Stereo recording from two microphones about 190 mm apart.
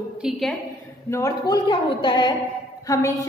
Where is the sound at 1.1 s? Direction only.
20° left (ahead or behind).